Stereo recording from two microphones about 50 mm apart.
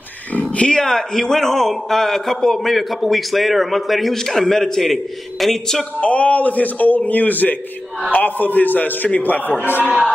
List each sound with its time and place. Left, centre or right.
0.3 s speech: left
0.8 s a man's voice: centre
5.9 s a man's voice: left